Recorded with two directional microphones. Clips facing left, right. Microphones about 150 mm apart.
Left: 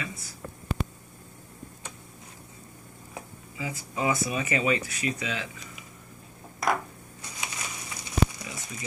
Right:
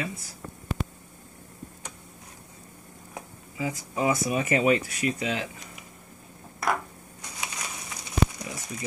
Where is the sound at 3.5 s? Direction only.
45° right (ahead or behind).